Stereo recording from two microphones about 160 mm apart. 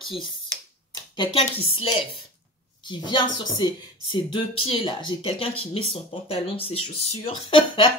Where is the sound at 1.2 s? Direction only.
35° left (ahead or behind).